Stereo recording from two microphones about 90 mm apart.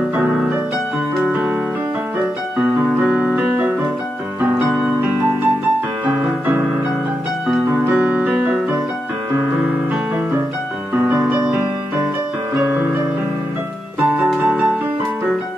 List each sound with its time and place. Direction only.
0.1 s music: 15° right (ahead or behind)
1.2 s keyboard: 15° right (ahead or behind)
2.1 s piano: 10° right (ahead or behind)
4.4 s keyboard: 20° right (ahead or behind)
4.6 s music: 10° right (ahead or behind)
6.0 s music: 20° right (ahead or behind)
7.7 s music: 15° right (ahead or behind)
10.9 s music: 20° right (ahead or behind)